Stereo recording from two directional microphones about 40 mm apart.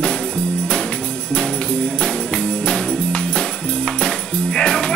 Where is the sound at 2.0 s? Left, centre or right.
Left.